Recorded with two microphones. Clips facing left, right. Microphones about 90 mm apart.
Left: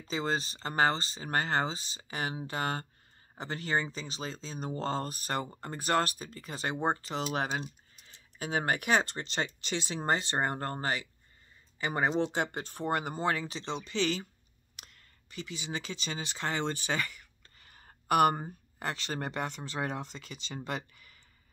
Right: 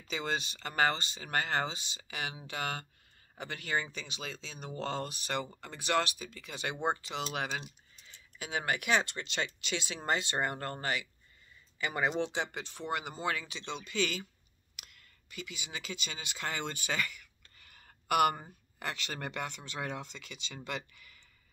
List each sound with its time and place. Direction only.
0.1 s speech: 35° left (ahead or behind)